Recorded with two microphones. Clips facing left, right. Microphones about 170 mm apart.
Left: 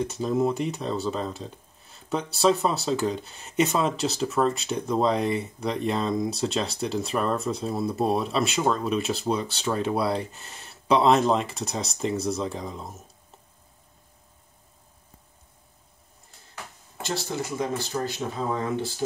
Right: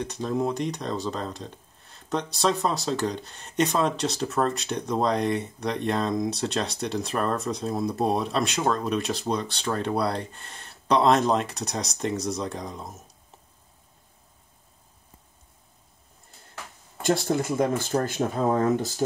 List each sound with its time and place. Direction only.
0.0 s speech: 5° left (ahead or behind)
17.0 s speech: 50° right (ahead or behind)